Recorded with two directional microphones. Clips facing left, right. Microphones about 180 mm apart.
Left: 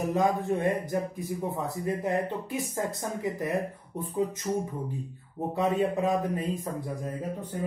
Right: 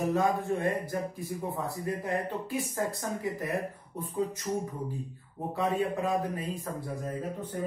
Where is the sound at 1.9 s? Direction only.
20° left (ahead or behind).